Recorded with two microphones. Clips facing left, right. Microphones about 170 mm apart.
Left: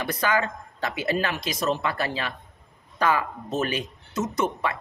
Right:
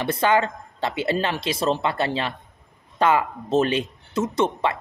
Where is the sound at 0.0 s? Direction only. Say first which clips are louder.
Right 5 dB; 25° right (ahead or behind).